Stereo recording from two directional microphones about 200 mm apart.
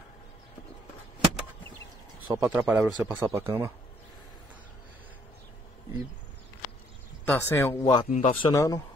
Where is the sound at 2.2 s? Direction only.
10° right (ahead or behind).